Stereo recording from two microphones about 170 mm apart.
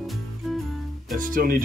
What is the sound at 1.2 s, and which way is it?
Speech, 55° right (ahead or behind).